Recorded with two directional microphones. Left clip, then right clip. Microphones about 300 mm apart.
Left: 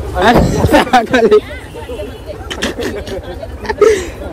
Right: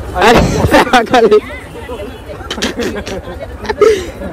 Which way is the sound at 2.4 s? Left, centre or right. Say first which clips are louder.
Right 2 dB; right.